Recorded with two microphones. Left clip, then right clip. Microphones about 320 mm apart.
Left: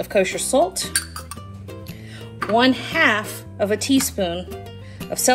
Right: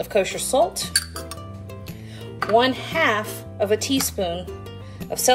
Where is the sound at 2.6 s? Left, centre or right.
Left.